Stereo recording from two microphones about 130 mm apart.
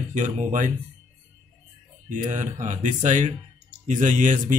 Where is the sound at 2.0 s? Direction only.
75° right (ahead or behind).